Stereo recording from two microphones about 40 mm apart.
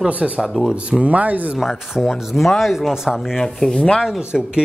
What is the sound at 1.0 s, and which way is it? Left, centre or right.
Speech, right.